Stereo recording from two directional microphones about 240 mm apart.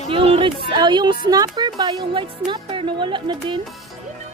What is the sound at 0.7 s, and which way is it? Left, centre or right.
Speech, centre.